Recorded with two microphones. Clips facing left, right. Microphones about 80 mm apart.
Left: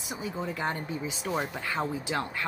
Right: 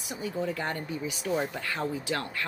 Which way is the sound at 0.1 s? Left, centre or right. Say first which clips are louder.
Right 2 dB; centre.